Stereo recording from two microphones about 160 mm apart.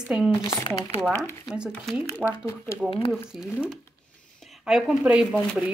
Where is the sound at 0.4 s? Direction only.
30° left (ahead or behind).